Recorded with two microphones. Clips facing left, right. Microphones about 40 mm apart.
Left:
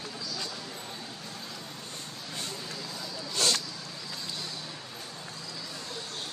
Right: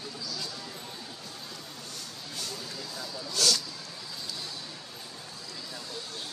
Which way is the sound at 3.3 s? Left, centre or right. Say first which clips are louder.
Right 1 dB; left.